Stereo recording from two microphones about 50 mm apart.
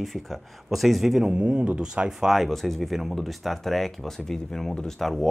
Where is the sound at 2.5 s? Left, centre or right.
Centre.